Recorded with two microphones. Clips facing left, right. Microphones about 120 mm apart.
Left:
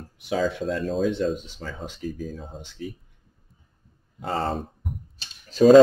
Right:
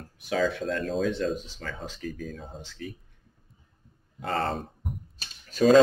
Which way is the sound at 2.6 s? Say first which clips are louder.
Left 3 dB; 15° left (ahead or behind).